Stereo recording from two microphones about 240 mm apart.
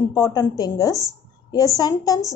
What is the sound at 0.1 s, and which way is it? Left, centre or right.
A woman's voice, centre.